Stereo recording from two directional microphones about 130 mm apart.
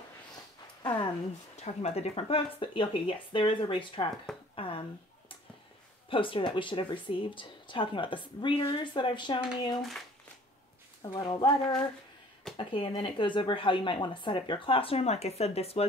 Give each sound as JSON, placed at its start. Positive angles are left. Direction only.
{"t": 1.6, "sound": "speech", "side_deg": 55}
{"t": 6.0, "sound": "speech", "side_deg": 40}
{"t": 9.8, "sound": "speech", "side_deg": 0}
{"t": 11.0, "sound": "speech", "side_deg": 30}
{"t": 12.5, "sound": "speech", "side_deg": 45}